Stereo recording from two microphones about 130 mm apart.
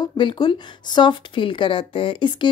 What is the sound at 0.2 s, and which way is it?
Speech, 40° left (ahead or behind).